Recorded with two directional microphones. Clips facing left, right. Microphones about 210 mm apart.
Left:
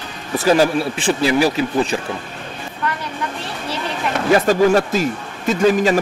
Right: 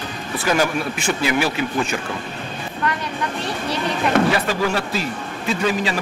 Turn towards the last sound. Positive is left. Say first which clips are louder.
# left 6 dB
turn(degrees=45)  # may be behind; listen again after turning